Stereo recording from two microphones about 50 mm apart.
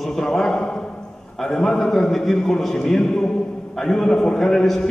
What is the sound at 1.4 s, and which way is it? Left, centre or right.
A man's voice, centre.